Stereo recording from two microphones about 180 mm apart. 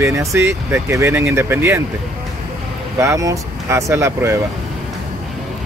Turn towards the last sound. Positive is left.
turn(degrees=-15)  # may be behind; listen again after turning